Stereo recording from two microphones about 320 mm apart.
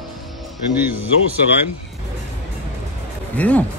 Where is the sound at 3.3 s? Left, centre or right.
Centre.